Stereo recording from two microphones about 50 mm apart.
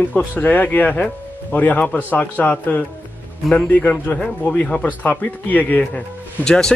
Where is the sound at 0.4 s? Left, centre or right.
Left.